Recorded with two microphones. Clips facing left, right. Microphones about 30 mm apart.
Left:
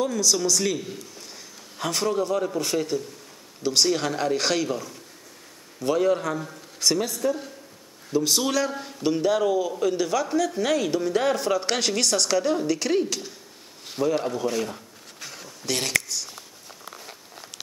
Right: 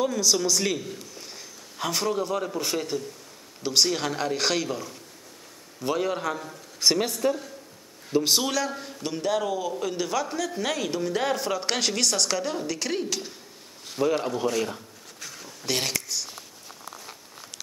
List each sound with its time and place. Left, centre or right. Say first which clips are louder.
0.0 s a man's voice: left 1 dB; centre
6.8 s speech: right 1 dB; right
8.5 s a man's voice: left 3 dB; centre
15.1 s a sound: left 2 dB; centre
15.6 s speech: even; centre
16.1 s a sound: even; centre